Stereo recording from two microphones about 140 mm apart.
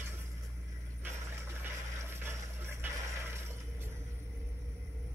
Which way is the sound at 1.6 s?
15° right (ahead or behind).